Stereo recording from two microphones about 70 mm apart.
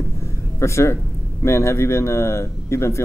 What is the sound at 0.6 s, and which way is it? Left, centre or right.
Speech, left.